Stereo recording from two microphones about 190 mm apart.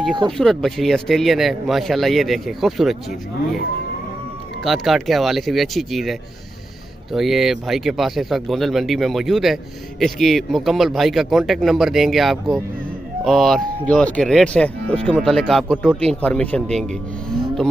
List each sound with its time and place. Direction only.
0.4 s speech: centre (ahead or behind)
4.6 s speech: centre (ahead or behind)